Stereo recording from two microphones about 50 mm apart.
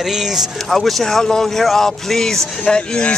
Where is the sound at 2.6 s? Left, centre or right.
Centre.